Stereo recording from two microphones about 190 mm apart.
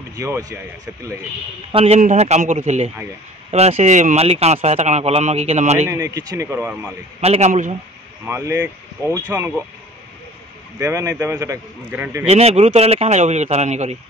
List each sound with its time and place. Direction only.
0.1 s speech: 20° right (ahead or behind)
1.7 s speech: 30° right (ahead or behind)
5.9 s a man's voice: 15° right (ahead or behind)
7.2 s speech: 35° right (ahead or behind)
8.3 s a man's voice: 15° right (ahead or behind)
10.8 s a man's voice: 15° right (ahead or behind)
12.3 s speech: 35° right (ahead or behind)